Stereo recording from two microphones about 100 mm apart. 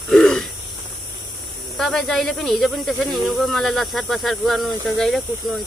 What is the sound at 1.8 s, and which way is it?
A man's voice, 5° left (ahead or behind).